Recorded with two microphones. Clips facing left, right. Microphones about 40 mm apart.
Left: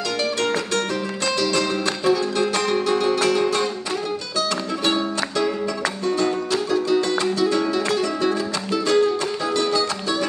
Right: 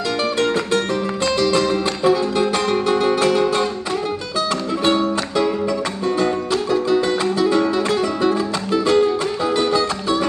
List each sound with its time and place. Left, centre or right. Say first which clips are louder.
0.4 s music: right 4 dB; centre
4.8 s music: right 4 dB; centre